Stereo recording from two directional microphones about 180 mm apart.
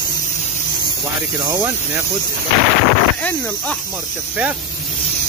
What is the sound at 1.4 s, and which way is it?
Speech, 15° right (ahead or behind).